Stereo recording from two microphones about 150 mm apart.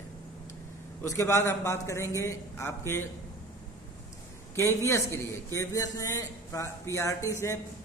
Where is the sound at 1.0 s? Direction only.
20° left (ahead or behind).